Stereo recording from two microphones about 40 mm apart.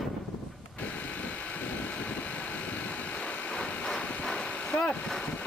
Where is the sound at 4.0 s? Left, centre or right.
Left.